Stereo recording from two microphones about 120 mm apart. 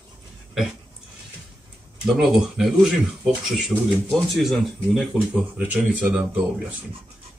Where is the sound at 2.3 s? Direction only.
Centre (ahead or behind).